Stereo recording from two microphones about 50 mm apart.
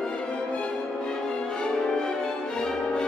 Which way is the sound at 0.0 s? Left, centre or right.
Centre.